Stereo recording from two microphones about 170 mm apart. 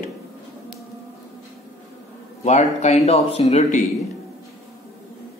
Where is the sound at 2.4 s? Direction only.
40° left (ahead or behind).